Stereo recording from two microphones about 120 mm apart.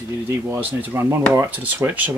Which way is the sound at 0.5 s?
15° right (ahead or behind).